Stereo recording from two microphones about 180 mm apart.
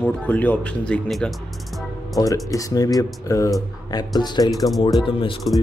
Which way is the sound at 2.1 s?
20° left (ahead or behind).